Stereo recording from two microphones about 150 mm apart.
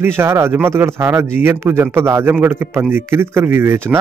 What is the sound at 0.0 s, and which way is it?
Speech, 15° right (ahead or behind).